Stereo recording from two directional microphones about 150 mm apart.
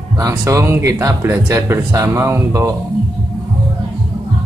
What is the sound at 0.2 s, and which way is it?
Speech, 20° right (ahead or behind).